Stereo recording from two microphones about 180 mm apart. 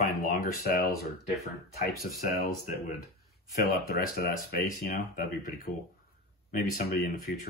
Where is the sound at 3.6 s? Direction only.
55° left (ahead or behind).